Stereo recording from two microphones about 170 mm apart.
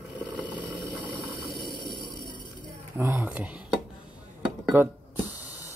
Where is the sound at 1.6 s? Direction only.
25° left (ahead or behind).